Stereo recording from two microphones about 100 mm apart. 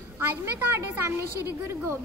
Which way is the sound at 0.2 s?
25° right (ahead or behind).